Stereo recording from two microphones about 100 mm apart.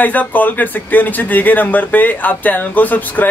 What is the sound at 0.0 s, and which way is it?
Speech, 15° left (ahead or behind).